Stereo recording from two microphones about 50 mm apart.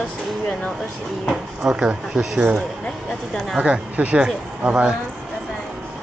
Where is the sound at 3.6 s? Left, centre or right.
Right.